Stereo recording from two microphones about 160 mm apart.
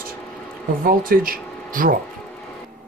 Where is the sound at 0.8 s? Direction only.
65° right (ahead or behind).